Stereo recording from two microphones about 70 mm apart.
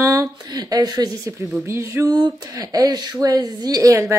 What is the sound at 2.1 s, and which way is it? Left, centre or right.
Speech, right.